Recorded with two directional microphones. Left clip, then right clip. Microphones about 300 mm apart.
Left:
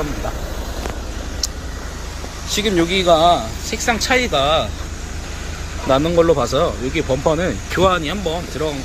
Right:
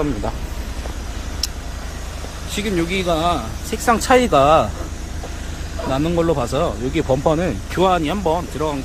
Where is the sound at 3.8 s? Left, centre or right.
Centre.